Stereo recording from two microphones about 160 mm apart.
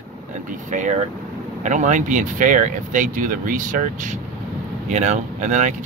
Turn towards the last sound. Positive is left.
turn(degrees=-50)  # may be behind; listen again after turning